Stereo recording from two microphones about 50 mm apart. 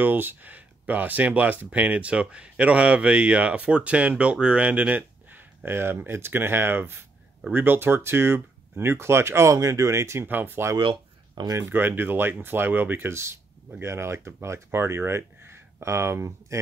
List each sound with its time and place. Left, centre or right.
0.0 s speech: right
10.2 s speech: right
11.7 s speech: right
13.1 s speech: right